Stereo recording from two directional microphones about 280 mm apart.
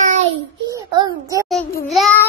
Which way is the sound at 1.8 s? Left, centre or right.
Centre.